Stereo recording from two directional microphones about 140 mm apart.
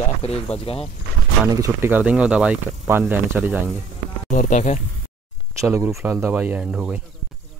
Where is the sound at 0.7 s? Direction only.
45° left (ahead or behind).